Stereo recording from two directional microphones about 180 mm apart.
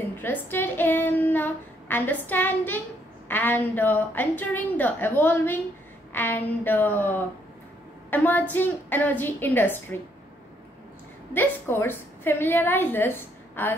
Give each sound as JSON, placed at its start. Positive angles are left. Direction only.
{"t": 0.2, "sound": "child singing", "side_deg": 10}
{"t": 3.3, "sound": "a woman's voice", "side_deg": 10}
{"t": 11.3, "sound": "a woman's voice", "side_deg": 10}